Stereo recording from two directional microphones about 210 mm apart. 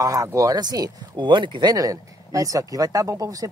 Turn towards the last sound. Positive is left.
turn(degrees=-15)  # may be behind; listen again after turning